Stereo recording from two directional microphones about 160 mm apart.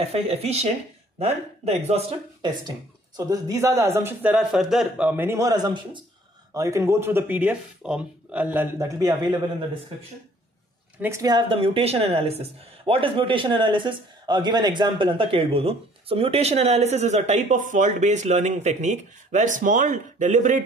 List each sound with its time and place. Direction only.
0.0 s a woman's voice: 40° right (ahead or behind)
3.2 s speech: 20° right (ahead or behind)
11.0 s a woman's voice: 20° right (ahead or behind); by 20.6 s 50° right (ahead or behind)